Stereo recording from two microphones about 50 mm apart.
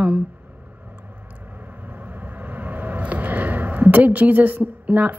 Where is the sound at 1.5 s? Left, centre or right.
Right.